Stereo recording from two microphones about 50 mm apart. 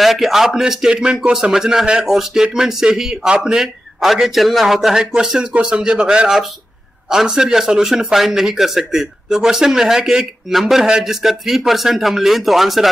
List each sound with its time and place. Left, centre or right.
0.0 s a man's voice: centre
5.4 s a man's voice: centre